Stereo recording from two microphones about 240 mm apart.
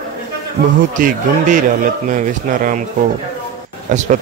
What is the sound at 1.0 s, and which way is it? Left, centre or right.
Speech, right.